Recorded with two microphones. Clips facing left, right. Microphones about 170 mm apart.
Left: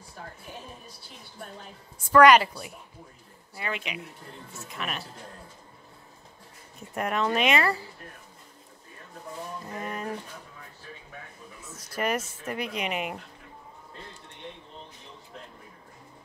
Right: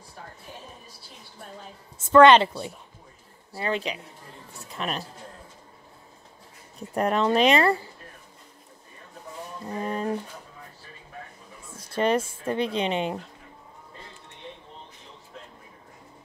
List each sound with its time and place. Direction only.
2.0 s a woman's voice: 25° right (ahead or behind)
6.9 s a woman's voice: 35° right (ahead or behind)
9.7 s a woman's voice: 30° right (ahead or behind)
11.9 s a woman's voice: 30° right (ahead or behind)